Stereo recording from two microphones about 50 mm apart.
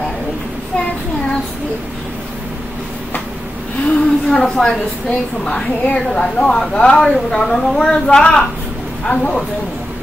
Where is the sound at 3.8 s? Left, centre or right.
Centre.